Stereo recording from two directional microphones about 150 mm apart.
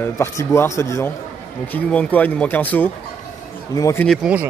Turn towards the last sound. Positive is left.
turn(degrees=0)  # may be behind; listen again after turning